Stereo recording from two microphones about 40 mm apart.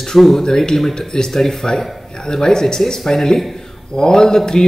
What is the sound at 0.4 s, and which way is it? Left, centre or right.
Speech, centre.